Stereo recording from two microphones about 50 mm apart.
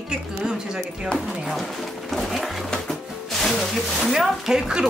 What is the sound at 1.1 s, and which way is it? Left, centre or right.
Speech, centre.